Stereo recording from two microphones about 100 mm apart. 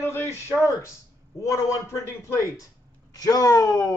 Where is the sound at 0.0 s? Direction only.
25° left (ahead or behind).